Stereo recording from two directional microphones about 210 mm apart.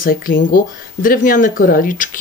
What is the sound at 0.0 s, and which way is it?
Speech, 40° left (ahead or behind).